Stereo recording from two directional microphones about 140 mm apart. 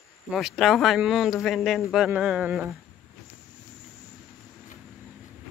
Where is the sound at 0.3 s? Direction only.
5° right (ahead or behind).